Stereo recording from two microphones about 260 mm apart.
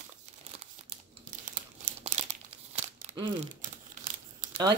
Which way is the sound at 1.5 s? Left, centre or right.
Right.